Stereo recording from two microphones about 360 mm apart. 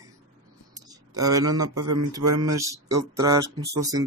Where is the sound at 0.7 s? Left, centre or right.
Centre.